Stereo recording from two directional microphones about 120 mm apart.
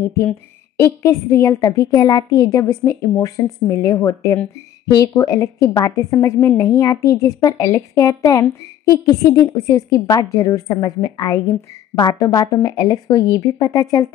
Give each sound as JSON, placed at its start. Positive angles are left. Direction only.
{"t": 0.7, "sound": "a woman's voice", "side_deg": 25}